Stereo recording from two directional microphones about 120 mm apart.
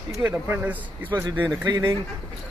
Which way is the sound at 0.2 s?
15° right (ahead or behind).